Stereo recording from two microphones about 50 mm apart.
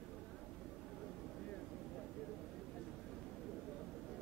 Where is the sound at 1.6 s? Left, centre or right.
Centre.